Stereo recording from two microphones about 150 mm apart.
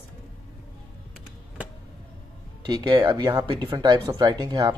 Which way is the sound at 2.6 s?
30° right (ahead or behind).